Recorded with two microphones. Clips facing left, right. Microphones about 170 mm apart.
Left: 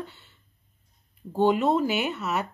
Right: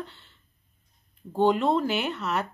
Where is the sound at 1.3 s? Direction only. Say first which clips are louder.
Left 1 dB; 5° left (ahead or behind).